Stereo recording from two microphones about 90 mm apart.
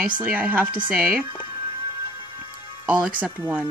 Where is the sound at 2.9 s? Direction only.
15° right (ahead or behind).